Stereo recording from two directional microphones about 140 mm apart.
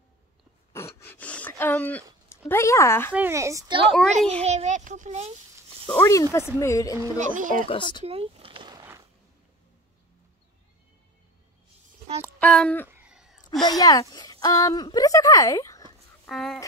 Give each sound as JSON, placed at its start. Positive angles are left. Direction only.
{"t": 0.7, "sound": "a sound", "side_deg": 20}
{"t": 2.2, "sound": "speech", "side_deg": 20}
{"t": 3.2, "sound": "a child's voice", "side_deg": -20}
{"t": 3.8, "sound": "a child's voice", "side_deg": 5}
{"t": 4.4, "sound": "a child's voice", "side_deg": -50}
{"t": 5.9, "sound": "speech", "side_deg": 20}
{"t": 7.2, "sound": "speech", "side_deg": -70}
{"t": 7.6, "sound": "speech", "side_deg": 35}
{"t": 8.0, "sound": "a sound", "side_deg": -45}
{"t": 12.4, "sound": "speech", "side_deg": 10}
{"t": 12.8, "sound": "a sound", "side_deg": -10}
{"t": 13.7, "sound": "speech", "side_deg": 25}
{"t": 16.3, "sound": "speech", "side_deg": 0}